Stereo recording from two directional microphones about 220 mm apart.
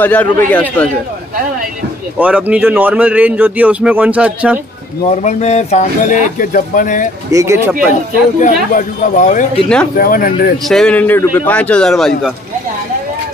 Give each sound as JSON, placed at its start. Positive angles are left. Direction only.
{"t": 0.0, "sound": "a man's voice", "side_deg": 5}
{"t": 2.1, "sound": "a man's voice", "side_deg": -5}
{"t": 5.0, "sound": "speech", "side_deg": 30}
{"t": 7.3, "sound": "a man's voice", "side_deg": -15}
{"t": 8.4, "sound": "speech", "side_deg": 35}
{"t": 10.7, "sound": "a man's voice", "side_deg": 5}